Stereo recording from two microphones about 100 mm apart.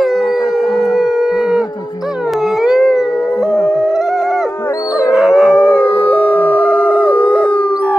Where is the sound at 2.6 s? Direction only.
5° right (ahead or behind).